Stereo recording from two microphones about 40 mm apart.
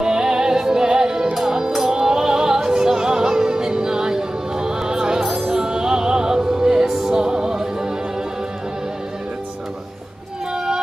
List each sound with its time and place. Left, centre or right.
0.0 s music: centre
5.2 s music: centre
10.5 s music: centre